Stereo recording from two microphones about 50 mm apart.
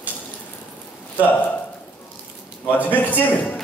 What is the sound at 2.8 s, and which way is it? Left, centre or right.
Speech, left.